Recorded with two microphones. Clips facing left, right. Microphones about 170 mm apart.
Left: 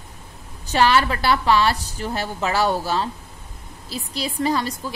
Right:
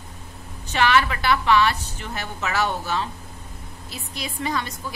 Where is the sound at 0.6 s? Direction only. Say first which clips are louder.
Left 2 dB; 35° left (ahead or behind).